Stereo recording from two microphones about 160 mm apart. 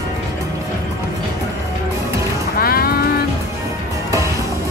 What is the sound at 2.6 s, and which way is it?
Music, 70° left (ahead or behind).